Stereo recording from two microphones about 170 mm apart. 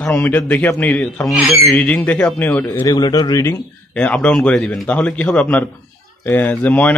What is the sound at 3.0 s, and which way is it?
Speech, 25° left (ahead or behind).